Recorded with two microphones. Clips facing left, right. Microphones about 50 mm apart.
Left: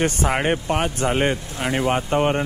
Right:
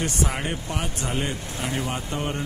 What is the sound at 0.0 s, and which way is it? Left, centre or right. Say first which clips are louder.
Speech: left 6 dB; left.